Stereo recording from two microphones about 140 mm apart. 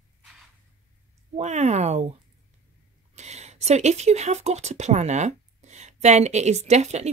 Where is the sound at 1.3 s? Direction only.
50° right (ahead or behind).